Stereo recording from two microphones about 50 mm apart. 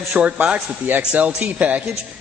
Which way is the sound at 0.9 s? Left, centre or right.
Right.